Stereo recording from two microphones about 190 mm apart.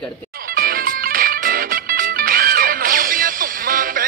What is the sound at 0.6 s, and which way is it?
Music, 50° right (ahead or behind).